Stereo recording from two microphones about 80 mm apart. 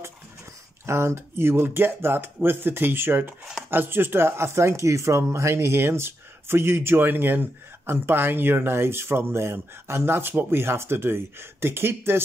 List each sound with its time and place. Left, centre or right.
0.8 s speech: right